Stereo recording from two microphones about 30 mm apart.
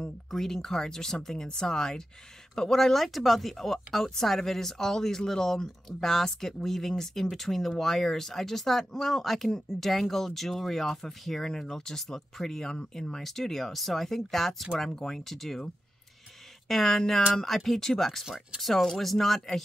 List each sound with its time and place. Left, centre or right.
0.3 s speech: centre
12.6 s speech: left
13.2 s speech: centre
16.6 s speech: centre